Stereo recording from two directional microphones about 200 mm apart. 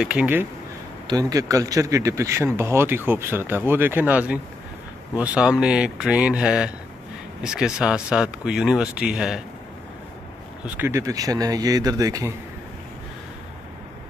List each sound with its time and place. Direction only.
0.0 s speech: 5° right (ahead or behind)
1.0 s speech: 15° right (ahead or behind)
10.6 s speech: 10° right (ahead or behind)